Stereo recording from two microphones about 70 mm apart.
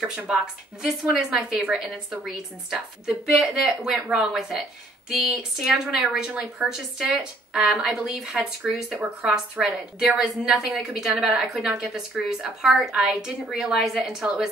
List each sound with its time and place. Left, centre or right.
0.0 s a woman's voice: centre